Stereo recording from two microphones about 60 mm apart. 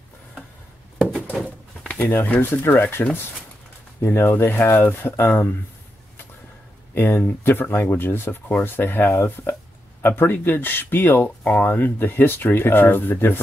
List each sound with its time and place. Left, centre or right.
1.3 s bird: centre
2.5 s speech: left
7.0 s speech: left